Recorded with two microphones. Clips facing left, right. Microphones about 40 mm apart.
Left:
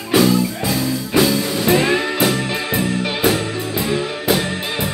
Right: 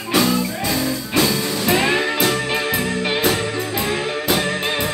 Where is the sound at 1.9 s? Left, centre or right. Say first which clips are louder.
Left 1 dB; centre.